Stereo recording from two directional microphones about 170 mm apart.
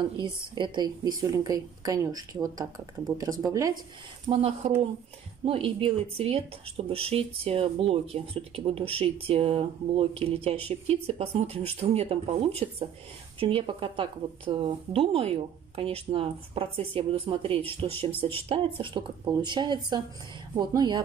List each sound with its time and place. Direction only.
0.2 s a woman's voice: 30° right (ahead or behind)
4.3 s a woman's voice: 35° right (ahead or behind)